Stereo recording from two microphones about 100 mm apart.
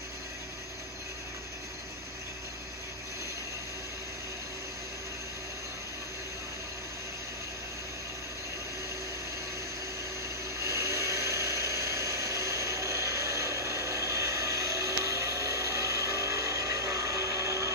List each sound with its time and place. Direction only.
10.6 s vehicle: 25° right (ahead or behind)